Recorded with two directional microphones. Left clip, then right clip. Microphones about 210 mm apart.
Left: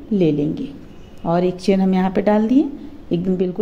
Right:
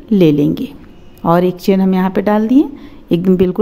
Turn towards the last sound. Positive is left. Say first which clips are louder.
# right 8 dB
turn(degrees=-35)  # may be behind; listen again after turning